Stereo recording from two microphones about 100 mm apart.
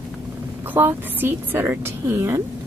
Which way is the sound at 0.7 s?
20° right (ahead or behind).